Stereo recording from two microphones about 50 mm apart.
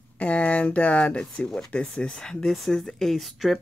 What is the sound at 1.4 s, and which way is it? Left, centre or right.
Speech, centre.